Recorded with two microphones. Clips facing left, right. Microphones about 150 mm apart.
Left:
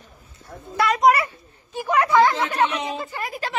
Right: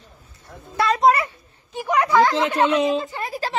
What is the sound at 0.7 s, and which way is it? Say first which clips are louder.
A woman's voice: even; 25° right (ahead or behind).